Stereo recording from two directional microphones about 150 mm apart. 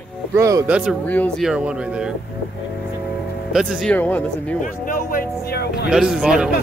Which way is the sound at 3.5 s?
Centre (ahead or behind).